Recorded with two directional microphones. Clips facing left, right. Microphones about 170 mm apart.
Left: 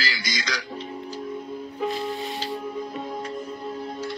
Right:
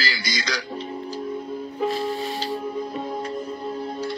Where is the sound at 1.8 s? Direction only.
35° right (ahead or behind).